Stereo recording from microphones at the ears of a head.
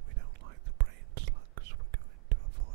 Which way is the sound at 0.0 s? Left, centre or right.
Right.